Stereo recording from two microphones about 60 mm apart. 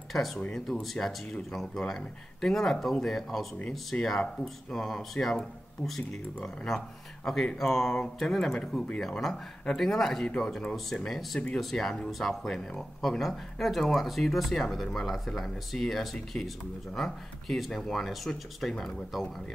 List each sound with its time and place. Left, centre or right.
0.1 s speech: centre
0.4 s speech: centre
3.9 s speech: left
4.4 s speech: centre